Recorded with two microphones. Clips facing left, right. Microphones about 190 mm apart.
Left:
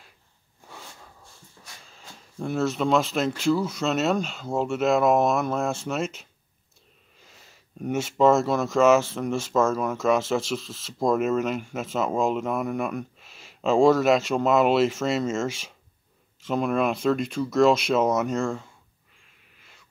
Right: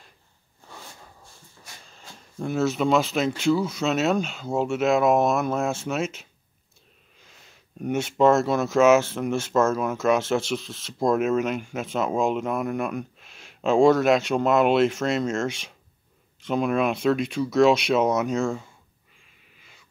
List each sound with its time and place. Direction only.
1.9 s speech: centre (ahead or behind)
7.8 s speech: centre (ahead or behind)